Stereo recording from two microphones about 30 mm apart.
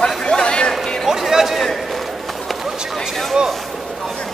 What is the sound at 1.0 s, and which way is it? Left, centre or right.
Music, centre.